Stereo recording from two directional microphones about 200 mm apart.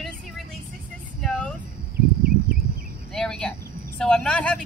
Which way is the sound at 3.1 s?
5° left (ahead or behind).